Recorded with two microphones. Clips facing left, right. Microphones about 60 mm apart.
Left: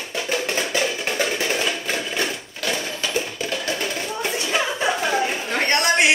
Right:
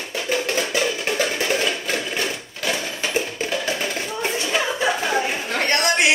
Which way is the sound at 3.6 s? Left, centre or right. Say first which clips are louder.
Right 1 dB; centre.